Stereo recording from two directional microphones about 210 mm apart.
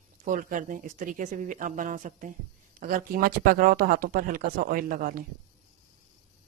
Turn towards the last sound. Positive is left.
turn(degrees=-40)  # may be behind; listen again after turning